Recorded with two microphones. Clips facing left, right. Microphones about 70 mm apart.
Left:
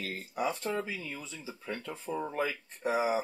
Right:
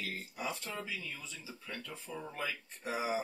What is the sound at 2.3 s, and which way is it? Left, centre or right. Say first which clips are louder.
Speech: left 7 dB; left.